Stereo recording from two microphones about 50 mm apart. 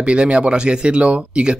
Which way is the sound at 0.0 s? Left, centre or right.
Right.